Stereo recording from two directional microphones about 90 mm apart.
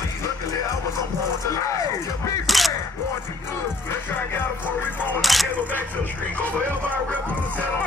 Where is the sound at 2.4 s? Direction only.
Centre (ahead or behind).